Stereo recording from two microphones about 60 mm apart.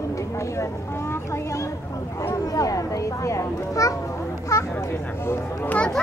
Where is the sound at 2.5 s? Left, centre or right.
Left.